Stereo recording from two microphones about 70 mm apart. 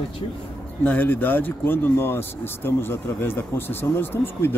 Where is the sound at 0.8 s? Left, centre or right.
Left.